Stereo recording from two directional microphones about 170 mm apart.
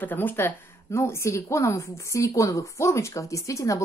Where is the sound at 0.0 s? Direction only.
10° left (ahead or behind).